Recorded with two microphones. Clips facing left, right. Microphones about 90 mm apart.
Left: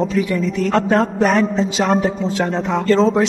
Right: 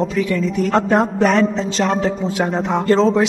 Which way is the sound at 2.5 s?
15° right (ahead or behind).